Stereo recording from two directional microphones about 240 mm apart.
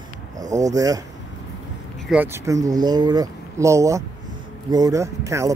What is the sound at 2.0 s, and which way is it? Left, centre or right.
Speech, centre.